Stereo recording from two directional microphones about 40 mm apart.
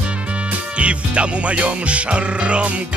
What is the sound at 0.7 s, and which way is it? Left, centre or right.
Music, right.